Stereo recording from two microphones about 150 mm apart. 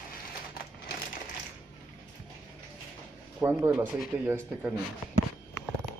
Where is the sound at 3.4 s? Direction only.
15° right (ahead or behind).